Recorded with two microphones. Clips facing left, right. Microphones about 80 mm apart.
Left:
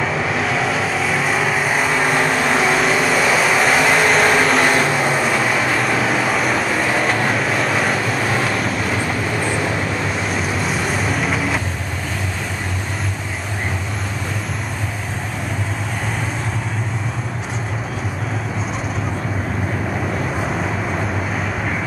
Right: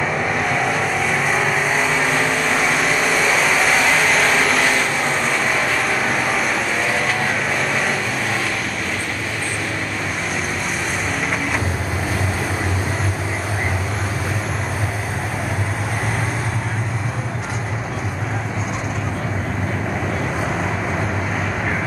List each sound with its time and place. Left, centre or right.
0.0 s vehicle: centre